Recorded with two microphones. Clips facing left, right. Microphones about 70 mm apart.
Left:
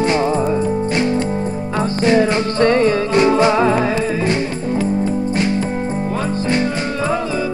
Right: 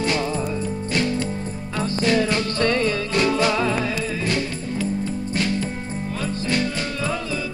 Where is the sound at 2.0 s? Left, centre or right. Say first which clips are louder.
Left 6 dB; left.